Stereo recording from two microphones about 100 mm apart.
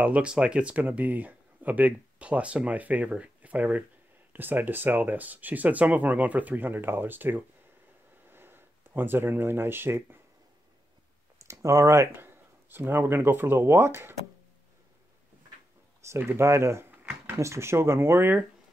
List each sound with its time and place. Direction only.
0.0 s speech: 10° right (ahead or behind)
11.3 s speech: 30° right (ahead or behind)
16.2 s speech: 25° right (ahead or behind)